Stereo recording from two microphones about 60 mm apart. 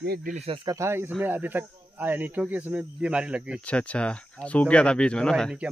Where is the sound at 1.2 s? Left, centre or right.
Right.